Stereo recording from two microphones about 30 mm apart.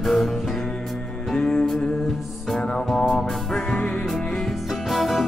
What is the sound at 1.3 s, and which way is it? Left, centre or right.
Music, left.